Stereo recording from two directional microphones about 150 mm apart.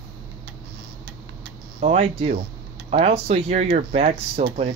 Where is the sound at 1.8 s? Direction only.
40° right (ahead or behind).